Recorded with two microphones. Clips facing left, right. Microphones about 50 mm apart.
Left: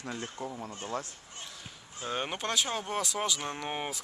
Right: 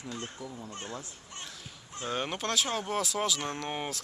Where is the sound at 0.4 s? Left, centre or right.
Left.